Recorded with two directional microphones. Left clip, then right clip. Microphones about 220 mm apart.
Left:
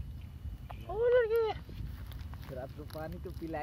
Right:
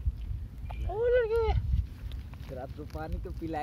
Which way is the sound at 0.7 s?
Centre (ahead or behind).